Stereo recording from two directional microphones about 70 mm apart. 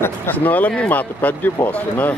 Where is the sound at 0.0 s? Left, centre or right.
Left.